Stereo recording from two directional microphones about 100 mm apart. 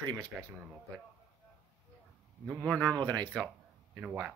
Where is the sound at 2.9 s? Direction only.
40° right (ahead or behind).